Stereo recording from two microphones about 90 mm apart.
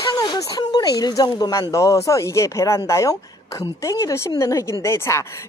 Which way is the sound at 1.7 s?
35° left (ahead or behind).